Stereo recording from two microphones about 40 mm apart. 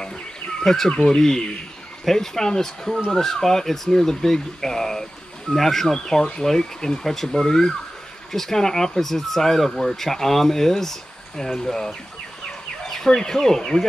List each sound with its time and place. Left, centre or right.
0.0 s a sound: centre
1.1 s speech: centre
12.9 s speech: centre